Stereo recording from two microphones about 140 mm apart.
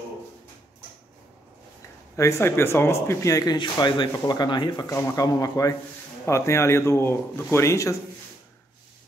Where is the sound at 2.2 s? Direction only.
20° left (ahead or behind).